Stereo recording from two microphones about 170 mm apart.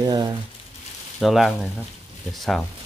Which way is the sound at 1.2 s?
Centre (ahead or behind).